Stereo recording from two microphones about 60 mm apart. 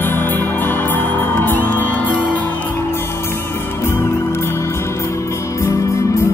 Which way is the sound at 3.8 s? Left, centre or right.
Left.